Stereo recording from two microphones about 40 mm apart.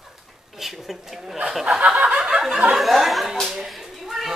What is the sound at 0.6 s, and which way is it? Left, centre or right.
Speech, centre.